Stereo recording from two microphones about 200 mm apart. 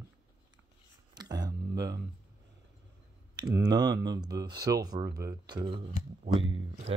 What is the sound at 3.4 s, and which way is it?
Speech, 20° right (ahead or behind).